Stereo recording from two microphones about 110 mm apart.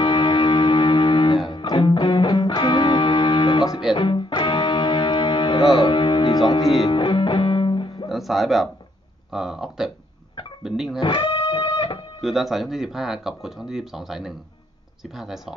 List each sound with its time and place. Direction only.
0.0 s music: 45° left (ahead or behind)
6.6 s speech: centre (ahead or behind)
6.9 s music: 45° left (ahead or behind)
8.1 s speech: centre (ahead or behind)
11.0 s music: 50° left (ahead or behind)
12.2 s speech: centre (ahead or behind)